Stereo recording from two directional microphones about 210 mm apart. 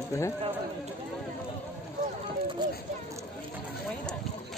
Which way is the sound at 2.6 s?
20° right (ahead or behind).